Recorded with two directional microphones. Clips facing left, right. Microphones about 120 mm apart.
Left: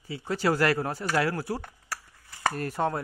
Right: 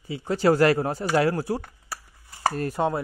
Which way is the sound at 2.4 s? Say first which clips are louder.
Right 3 dB; 25° right (ahead or behind).